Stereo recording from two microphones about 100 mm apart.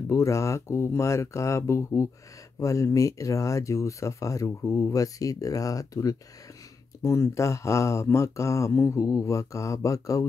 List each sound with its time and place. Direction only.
0.1 s speech: 30° left (ahead or behind)